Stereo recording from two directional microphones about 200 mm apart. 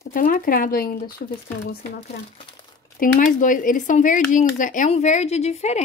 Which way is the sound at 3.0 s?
45° left (ahead or behind).